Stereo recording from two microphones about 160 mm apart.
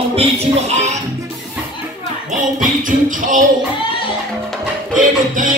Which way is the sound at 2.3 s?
55° right (ahead or behind).